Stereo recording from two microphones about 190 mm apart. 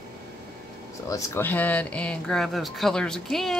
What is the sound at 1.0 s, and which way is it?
Speech, 15° left (ahead or behind).